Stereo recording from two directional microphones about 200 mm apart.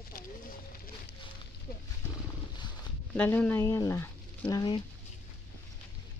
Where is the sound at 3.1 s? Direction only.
10° left (ahead or behind).